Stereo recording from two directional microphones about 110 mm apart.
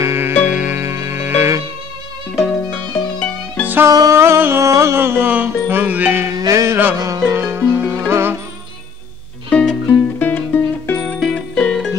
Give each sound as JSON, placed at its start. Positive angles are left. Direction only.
{"t": 0.0, "sound": "music", "side_deg": -25}
{"t": 0.5, "sound": "music", "side_deg": -15}
{"t": 2.3, "sound": "music", "side_deg": 0}
{"t": 2.9, "sound": "music", "side_deg": 15}
{"t": 3.6, "sound": "music", "side_deg": -20}
{"t": 3.9, "sound": "music", "side_deg": -30}
{"t": 6.3, "sound": "music", "side_deg": -30}
{"t": 7.3, "sound": "music", "side_deg": -20}
{"t": 9.5, "sound": "music", "side_deg": 10}
{"t": 11.1, "sound": "music", "side_deg": 5}